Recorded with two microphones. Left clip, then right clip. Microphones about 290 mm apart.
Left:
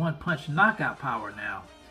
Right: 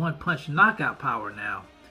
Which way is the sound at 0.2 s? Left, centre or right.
Centre.